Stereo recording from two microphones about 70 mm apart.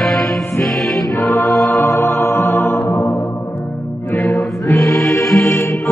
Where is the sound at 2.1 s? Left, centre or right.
Left.